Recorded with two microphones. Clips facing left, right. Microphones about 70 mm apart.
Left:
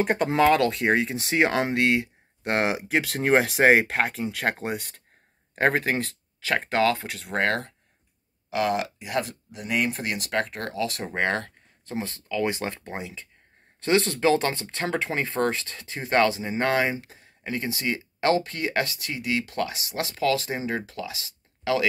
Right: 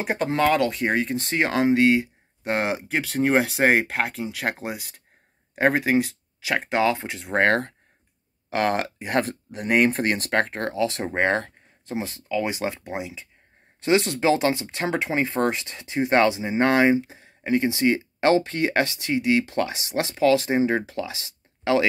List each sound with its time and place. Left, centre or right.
0.0 s speech: centre; by 21.8 s right